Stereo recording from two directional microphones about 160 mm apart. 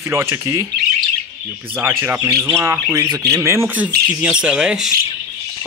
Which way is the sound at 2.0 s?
15° right (ahead or behind).